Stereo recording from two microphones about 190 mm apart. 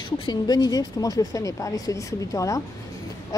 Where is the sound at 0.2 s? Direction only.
20° left (ahead or behind).